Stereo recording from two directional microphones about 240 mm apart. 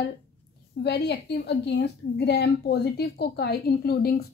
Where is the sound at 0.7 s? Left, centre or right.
Left.